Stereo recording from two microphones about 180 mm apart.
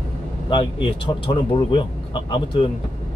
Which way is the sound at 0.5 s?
25° left (ahead or behind).